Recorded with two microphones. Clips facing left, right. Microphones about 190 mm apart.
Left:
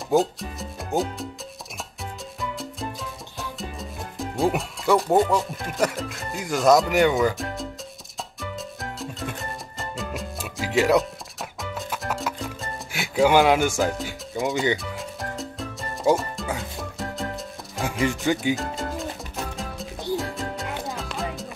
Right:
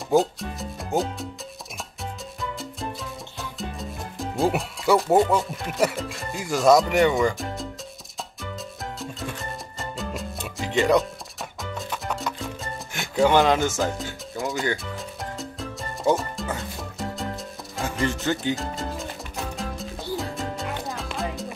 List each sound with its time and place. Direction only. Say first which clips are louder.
0.1 s speech: even; centre (ahead or behind)
2.6 s music: even; centre (ahead or behind)
4.2 s speech: even; centre (ahead or behind)
9.0 s music: left 1 dB; centre (ahead or behind)
12.9 s speech: left 1 dB; 5° left (ahead or behind)
15.0 s music: left 1 dB; centre (ahead or behind)
18.0 s music: left 2 dB; 15° left (ahead or behind)